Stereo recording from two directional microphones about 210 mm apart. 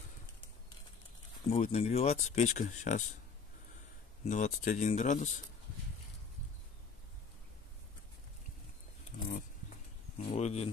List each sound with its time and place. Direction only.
1.5 s speech: 30° left (ahead or behind)
4.2 s speech: 35° left (ahead or behind)
10.1 s speech: 30° left (ahead or behind)